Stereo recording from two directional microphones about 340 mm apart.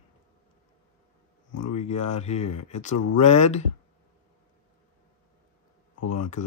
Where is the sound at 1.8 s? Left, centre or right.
Centre.